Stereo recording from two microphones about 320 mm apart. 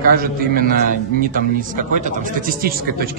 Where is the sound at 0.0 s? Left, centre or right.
Right.